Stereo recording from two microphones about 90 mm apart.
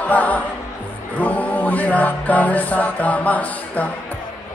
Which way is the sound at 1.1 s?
20° left (ahead or behind).